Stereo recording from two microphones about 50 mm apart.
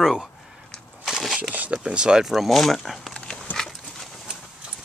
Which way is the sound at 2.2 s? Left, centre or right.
Centre.